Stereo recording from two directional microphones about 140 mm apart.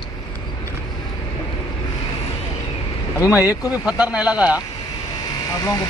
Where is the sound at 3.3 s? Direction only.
10° right (ahead or behind).